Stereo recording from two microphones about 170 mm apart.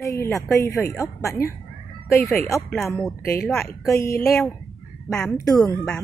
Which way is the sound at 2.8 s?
Centre (ahead or behind).